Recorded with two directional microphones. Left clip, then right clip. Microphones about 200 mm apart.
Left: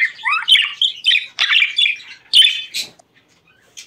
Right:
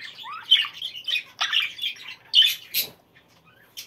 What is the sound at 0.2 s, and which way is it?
Bird, 90° left.